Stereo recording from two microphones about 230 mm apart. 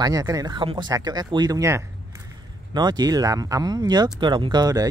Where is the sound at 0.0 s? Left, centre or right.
Centre.